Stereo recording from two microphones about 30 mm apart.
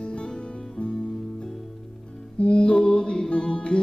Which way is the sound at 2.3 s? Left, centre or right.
Left.